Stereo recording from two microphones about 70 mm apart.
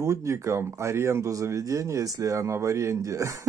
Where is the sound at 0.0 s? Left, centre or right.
Right.